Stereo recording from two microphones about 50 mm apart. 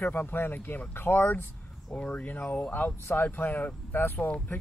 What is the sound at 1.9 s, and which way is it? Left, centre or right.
Speech, left.